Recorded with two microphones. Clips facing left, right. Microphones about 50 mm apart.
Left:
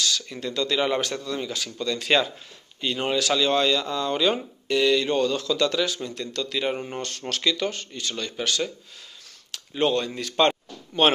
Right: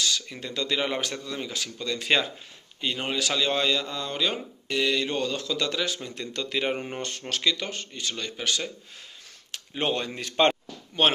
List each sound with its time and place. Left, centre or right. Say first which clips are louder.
0.0 s speech: left 2 dB; centre